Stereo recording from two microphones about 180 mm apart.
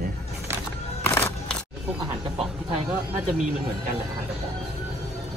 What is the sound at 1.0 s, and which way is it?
Single-lens reflex camera, 10° left (ahead or behind).